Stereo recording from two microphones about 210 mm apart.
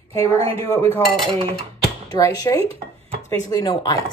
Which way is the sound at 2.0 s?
15° left (ahead or behind).